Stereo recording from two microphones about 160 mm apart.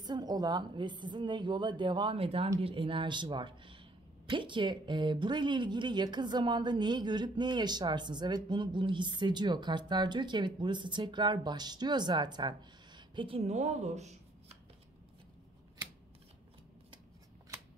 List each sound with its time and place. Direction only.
0.0 s speech: 25° right (ahead or behind); by 14.1 s 45° right (ahead or behind)